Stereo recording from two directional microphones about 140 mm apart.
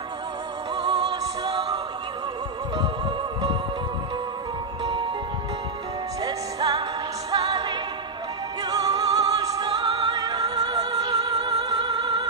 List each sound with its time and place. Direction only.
0.7 s music: 30° right (ahead or behind)
2.8 s music: 30° right (ahead or behind)
4.8 s music: 35° right (ahead or behind)
6.2 s music: 25° right (ahead or behind)
8.6 s opera: 30° right (ahead or behind)
9.7 s music: 40° right (ahead or behind)